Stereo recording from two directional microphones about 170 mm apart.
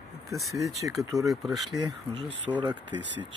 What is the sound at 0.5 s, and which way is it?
Speech, 20° right (ahead or behind).